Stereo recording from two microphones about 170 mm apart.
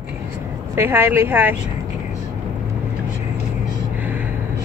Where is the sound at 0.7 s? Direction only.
15° right (ahead or behind).